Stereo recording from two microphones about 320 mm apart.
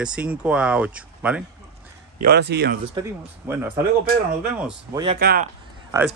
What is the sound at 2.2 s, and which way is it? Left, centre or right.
Speech, right.